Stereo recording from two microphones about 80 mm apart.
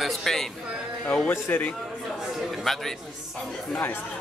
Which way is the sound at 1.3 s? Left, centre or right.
Left.